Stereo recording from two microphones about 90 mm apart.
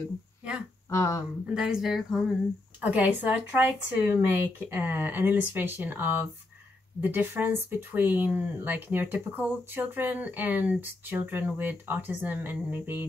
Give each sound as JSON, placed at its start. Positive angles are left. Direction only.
{"t": 0.8, "sound": "speech", "side_deg": 35}
{"t": 1.5, "sound": "speech", "side_deg": -5}
{"t": 2.8, "sound": "speech", "side_deg": -15}